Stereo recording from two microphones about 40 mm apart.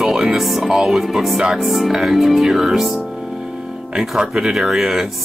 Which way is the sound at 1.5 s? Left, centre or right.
Centre.